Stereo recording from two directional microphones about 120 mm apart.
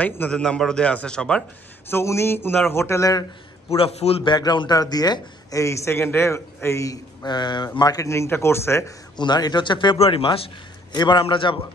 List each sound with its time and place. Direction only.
0.2 s a man's voice: 5° left (ahead or behind)
1.9 s a man's voice: 20° left (ahead or behind)
3.7 s a man's voice: 50° left (ahead or behind)
4.3 s a man's voice: 35° left (ahead or behind)
7.2 s a man's voice: 40° left (ahead or behind); by 8.9 s 20° left (ahead or behind)
9.1 s a man's voice: 35° left (ahead or behind)
11.0 s speech: 40° left (ahead or behind)